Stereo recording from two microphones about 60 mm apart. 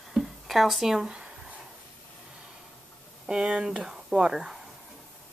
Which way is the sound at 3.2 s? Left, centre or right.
Centre.